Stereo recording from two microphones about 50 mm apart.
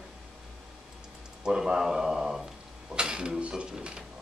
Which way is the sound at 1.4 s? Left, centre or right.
Centre.